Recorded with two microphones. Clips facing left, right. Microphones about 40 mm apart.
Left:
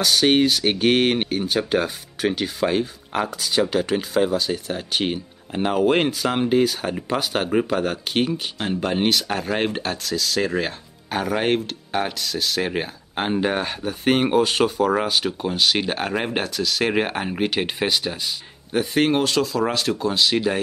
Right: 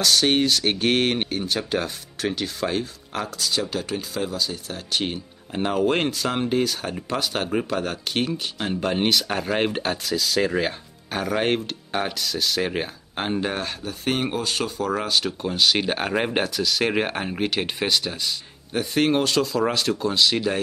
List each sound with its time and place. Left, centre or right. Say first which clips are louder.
0.0 s speech: left 2 dB; centre
14.8 s speech: left 4 dB; centre